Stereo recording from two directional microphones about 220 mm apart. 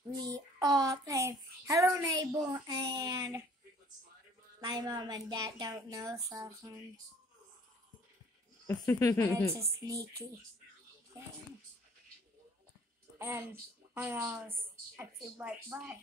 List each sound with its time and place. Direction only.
0.1 s a sound: 20° right (ahead or behind)
4.6 s a sound: 20° right (ahead or behind)
6.1 s speech: 15° right (ahead or behind)
8.6 s speech: 15° left (ahead or behind)
9.5 s speech: 15° right (ahead or behind)
13.2 s a woman's voice: 10° right (ahead or behind)